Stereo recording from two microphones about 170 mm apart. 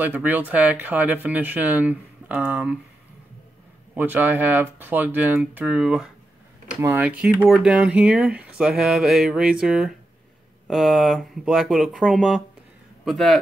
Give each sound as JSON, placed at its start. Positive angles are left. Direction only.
{"t": 0.0, "sound": "speech", "side_deg": -10}
{"t": 3.9, "sound": "speech", "side_deg": -10}
{"t": 7.6, "sound": "a sound", "side_deg": -5}